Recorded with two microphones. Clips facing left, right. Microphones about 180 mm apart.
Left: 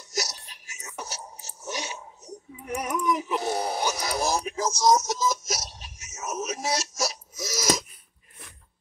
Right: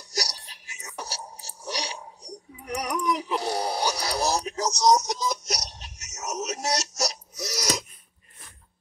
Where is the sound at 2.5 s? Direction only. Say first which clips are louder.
Even; 25° left (ahead or behind).